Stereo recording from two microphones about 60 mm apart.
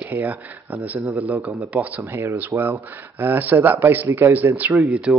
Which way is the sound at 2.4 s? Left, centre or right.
Right.